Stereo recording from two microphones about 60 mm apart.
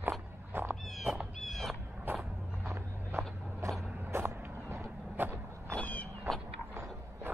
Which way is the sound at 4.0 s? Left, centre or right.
Right.